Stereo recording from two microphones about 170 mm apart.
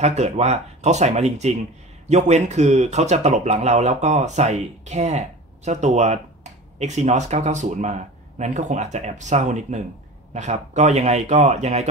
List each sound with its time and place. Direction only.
0.0 s speech: 40° right (ahead or behind)